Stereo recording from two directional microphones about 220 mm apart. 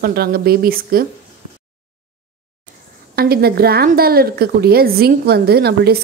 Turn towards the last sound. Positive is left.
turn(degrees=-45)  # may be behind; listen again after turning